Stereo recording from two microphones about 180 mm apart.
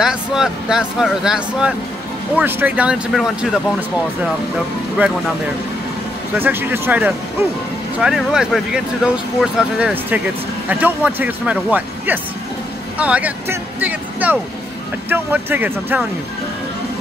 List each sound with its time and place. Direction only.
0.0 s speech: 5° right (ahead or behind)
6.3 s speech: 10° right (ahead or behind)